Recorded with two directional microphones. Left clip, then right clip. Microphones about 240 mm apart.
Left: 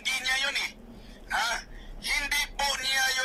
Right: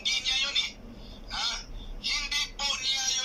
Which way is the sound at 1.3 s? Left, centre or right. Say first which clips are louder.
Left 4 dB; left.